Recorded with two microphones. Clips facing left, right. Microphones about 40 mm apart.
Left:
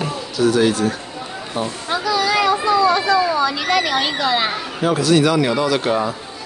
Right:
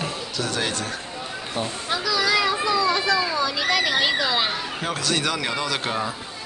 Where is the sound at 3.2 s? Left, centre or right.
Centre.